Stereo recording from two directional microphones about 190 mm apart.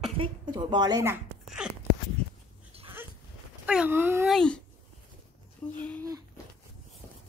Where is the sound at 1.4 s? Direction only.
5° right (ahead or behind).